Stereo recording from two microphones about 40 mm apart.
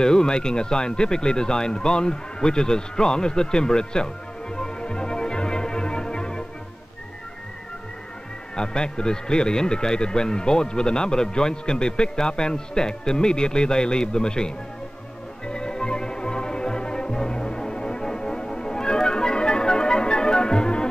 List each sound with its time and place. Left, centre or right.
0.0 s speech: centre
4.6 s music: left
8.5 s speech: left
15.4 s music: left